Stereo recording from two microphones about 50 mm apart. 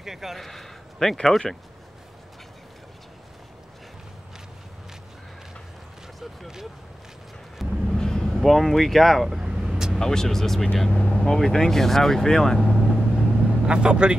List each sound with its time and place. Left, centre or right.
0.0 s a man's voice: centre
0.4 s a man's voice: centre
6.1 s a sound: centre
7.5 s vehicle: centre
8.0 s vehicle: centre
8.3 s vehicle: centre
9.9 s speech: centre
13.1 s vehicle: centre